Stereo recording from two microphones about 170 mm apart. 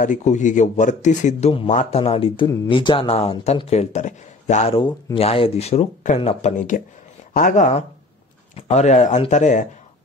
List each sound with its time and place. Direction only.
0.0 s speech: 45° left (ahead or behind)